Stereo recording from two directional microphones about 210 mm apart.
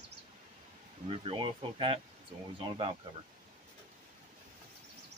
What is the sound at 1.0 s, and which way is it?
Speech, 25° right (ahead or behind).